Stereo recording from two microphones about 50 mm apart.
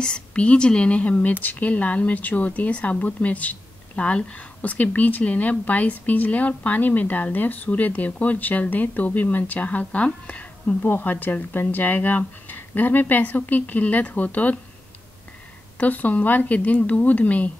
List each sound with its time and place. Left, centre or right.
0.0 s a woman's voice: centre
10.8 s speech: left
15.8 s speech: left